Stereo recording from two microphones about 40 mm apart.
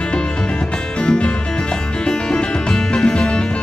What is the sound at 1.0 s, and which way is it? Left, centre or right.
Music, left.